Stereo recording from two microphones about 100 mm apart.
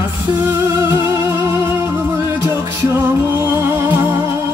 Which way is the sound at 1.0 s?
25° right (ahead or behind).